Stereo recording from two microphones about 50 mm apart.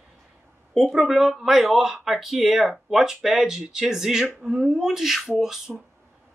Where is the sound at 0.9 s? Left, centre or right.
Centre.